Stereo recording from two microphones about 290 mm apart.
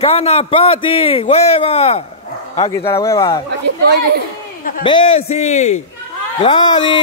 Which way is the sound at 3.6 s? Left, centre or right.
Right.